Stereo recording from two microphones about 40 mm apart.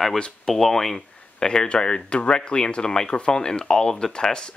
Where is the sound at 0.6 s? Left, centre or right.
Centre.